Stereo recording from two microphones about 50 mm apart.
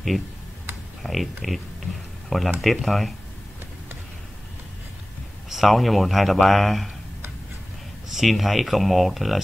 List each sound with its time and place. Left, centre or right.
1.0 s speech: centre
5.5 s speech: centre
8.1 s speech: centre